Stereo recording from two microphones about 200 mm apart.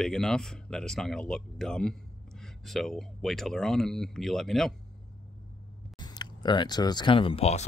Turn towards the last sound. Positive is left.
turn(degrees=30)  # may be behind; listen again after turning